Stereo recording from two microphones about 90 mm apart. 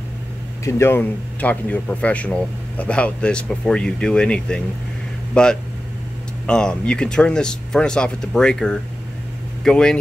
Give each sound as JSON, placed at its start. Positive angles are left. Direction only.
{"t": 0.7, "sound": "speech", "side_deg": 30}
{"t": 1.4, "sound": "speech", "side_deg": 15}